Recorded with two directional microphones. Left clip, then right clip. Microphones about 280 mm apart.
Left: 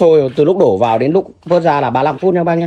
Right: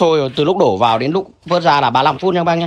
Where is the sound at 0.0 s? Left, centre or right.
Right.